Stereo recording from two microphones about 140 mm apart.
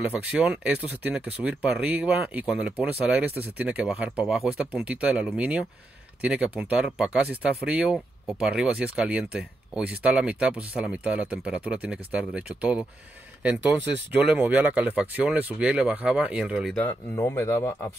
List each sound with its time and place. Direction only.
0.0 s speech: 10° right (ahead or behind)
17.1 s speech: 20° left (ahead or behind)